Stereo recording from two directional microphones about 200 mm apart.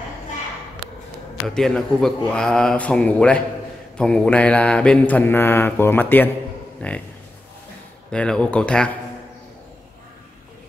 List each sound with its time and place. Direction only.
1.5 s speech: centre (ahead or behind)
4.0 s mantra: 5° left (ahead or behind)
8.1 s speech: 5° left (ahead or behind)